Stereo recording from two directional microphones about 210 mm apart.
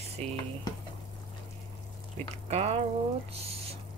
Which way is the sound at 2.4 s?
30° right (ahead or behind).